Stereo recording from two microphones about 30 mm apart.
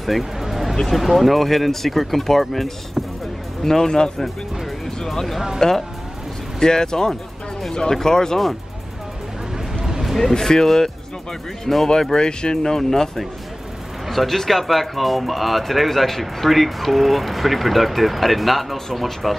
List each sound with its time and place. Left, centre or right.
0.2 s music: centre
0.8 s speech: centre
3.6 s speech: centre
5.0 s speech: centre
10.0 s a sound: centre
11.6 s speech: centre
12.0 s speech: left
12.6 s speech: centre
14.0 s speech: centre